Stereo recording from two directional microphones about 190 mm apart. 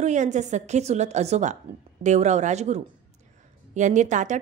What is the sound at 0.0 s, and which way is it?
A woman's voice, 40° right (ahead or behind).